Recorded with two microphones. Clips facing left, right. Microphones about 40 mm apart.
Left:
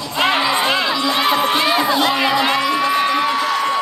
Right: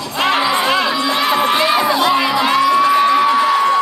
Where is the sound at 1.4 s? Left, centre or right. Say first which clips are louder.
Right 2 dB; right.